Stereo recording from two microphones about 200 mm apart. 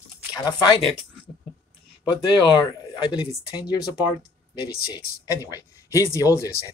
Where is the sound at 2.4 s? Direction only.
20° left (ahead or behind).